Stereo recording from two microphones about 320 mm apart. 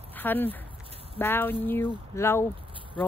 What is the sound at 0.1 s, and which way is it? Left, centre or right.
Speech, centre.